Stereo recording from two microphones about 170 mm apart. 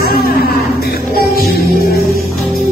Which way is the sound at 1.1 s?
60° left (ahead or behind).